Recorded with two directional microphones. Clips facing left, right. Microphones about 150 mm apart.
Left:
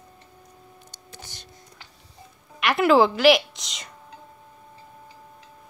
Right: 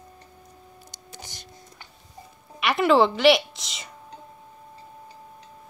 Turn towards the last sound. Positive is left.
turn(degrees=0)  # may be behind; listen again after turning